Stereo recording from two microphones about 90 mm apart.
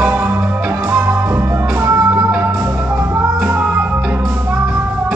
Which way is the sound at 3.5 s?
20° right (ahead or behind).